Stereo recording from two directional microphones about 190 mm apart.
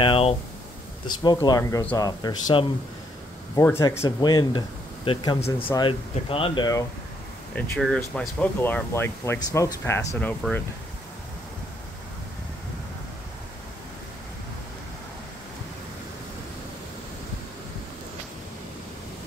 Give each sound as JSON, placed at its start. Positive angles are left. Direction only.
{"t": 0.0, "sound": "a sound", "side_deg": 30}
{"t": 1.0, "sound": "speech", "side_deg": 20}
{"t": 7.5, "sound": "speech", "side_deg": 5}